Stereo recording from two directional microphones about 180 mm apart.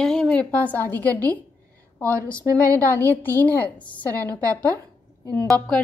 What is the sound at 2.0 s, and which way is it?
Speech, 15° right (ahead or behind).